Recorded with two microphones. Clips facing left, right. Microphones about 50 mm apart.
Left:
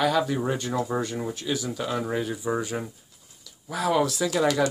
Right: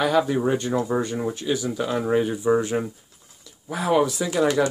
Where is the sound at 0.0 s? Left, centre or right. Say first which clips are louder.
Right 3 dB; centre.